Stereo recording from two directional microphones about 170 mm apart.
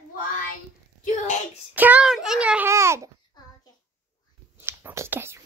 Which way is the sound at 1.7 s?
10° right (ahead or behind).